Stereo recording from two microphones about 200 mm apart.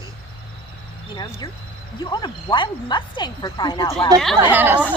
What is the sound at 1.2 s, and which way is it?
Speech, 20° left (ahead or behind).